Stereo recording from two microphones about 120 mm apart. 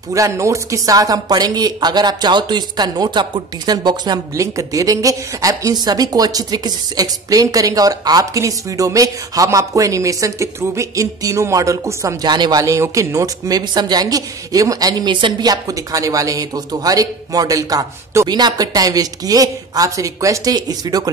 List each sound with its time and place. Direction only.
0.1 s speech: 25° right (ahead or behind)